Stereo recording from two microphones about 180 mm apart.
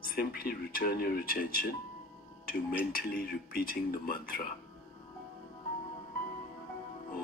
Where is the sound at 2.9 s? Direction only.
55° left (ahead or behind).